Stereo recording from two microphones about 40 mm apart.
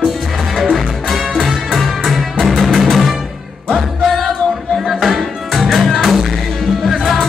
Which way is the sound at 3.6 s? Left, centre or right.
Centre.